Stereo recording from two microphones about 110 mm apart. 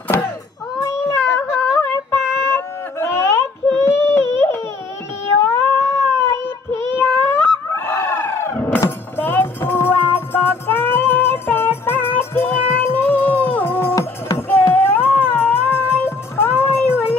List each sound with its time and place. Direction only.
0.7 s cat: 25° left (ahead or behind)
3.0 s a sound: 25° left (ahead or behind)
5.4 s cat: 25° left (ahead or behind)
8.8 s music: 20° left (ahead or behind)
14.7 s music: 20° left (ahead or behind)
16.6 s a sound: 20° left (ahead or behind)